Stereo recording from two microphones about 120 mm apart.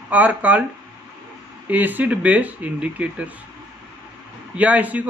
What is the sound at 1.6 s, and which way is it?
A man's voice, 15° right (ahead or behind).